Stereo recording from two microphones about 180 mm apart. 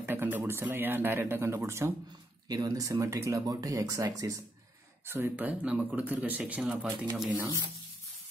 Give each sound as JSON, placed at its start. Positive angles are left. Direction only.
{"t": 0.0, "sound": "speech", "side_deg": -10}